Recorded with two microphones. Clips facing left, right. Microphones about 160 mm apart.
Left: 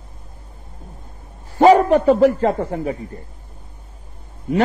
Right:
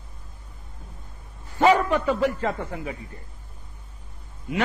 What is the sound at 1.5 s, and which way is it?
A man's voice, 40° left (ahead or behind).